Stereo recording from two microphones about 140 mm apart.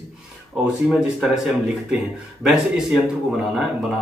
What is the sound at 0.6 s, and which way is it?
Speech, 5° right (ahead or behind).